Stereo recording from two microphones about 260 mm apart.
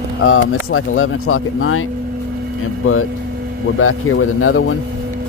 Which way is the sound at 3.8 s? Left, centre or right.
Left.